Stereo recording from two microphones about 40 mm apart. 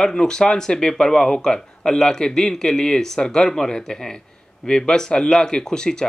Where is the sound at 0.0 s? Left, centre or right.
Centre.